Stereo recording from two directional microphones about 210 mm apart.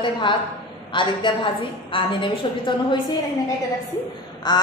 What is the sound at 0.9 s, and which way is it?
A woman's voice, 25° left (ahead or behind).